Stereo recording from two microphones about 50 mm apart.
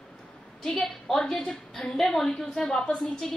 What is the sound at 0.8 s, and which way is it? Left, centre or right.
A woman's voice, centre.